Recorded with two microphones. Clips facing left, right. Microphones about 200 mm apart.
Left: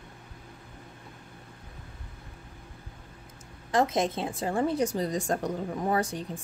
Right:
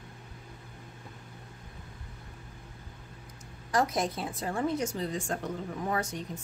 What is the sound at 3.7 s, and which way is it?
A woman's voice, 25° left (ahead or behind).